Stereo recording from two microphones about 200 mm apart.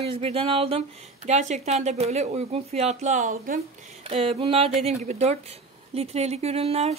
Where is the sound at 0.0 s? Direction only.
30° right (ahead or behind).